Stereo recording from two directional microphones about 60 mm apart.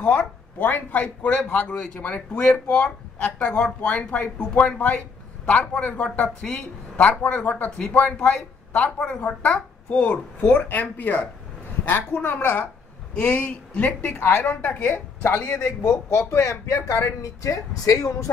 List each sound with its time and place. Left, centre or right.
0.0 s a man's voice: left
8.2 s a man's voice: centre; by 12.6 s left
13.1 s a man's voice: left
14.9 s a woman's voice: left
15.4 s speech: left
16.1 s speech: left